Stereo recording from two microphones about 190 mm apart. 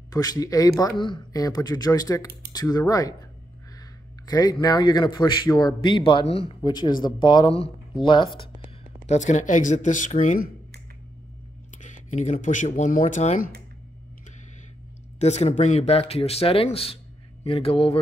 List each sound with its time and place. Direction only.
0.1 s a man's voice: 20° left (ahead or behind)
4.3 s a man's voice: 20° left (ahead or behind)
9.0 s speech: 40° left (ahead or behind)
11.8 s speech: 40° left (ahead or behind)
15.1 s speech: 35° left (ahead or behind)